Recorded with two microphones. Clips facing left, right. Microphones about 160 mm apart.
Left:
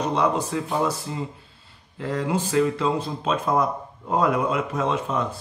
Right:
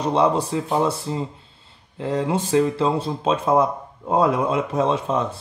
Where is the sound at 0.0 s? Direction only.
30° right (ahead or behind).